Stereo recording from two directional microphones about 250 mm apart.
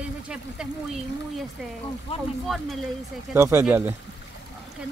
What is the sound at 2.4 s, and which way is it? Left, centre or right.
Speech, centre.